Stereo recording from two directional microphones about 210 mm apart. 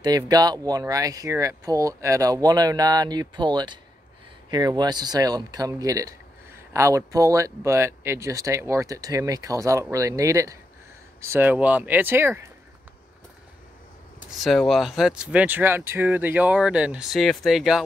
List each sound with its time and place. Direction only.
0.0 s speech: 20° right (ahead or behind)
14.4 s speech: centre (ahead or behind)